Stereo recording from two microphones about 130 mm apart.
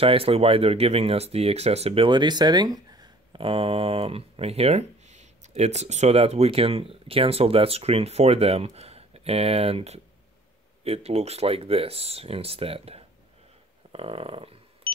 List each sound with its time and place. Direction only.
0.0 s speech: 45° right (ahead or behind); by 3.1 s 30° right (ahead or behind)
3.3 s speech: 45° right (ahead or behind)